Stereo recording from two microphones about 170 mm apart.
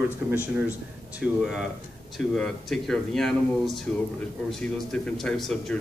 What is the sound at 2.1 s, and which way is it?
A man's voice, 5° left (ahead or behind).